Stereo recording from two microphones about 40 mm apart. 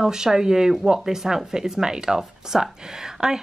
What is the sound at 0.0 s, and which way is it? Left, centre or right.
Speech, centre.